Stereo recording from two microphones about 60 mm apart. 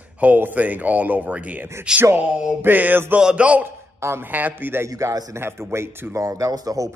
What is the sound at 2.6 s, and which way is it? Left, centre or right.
Speech, right.